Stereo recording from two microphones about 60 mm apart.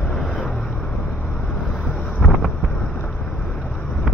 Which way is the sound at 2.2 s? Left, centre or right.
Left.